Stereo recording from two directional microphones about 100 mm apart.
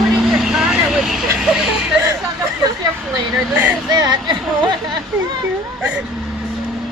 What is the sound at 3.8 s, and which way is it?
Speech, 45° right (ahead or behind).